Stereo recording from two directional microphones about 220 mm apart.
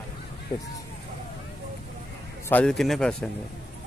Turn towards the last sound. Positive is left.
turn(degrees=5)  # may be behind; listen again after turning